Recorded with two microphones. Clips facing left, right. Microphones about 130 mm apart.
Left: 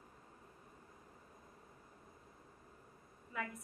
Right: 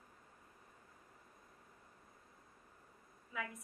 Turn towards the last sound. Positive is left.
turn(degrees=0)  # may be behind; listen again after turning